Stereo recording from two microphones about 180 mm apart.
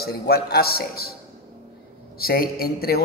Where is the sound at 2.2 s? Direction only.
55° left (ahead or behind).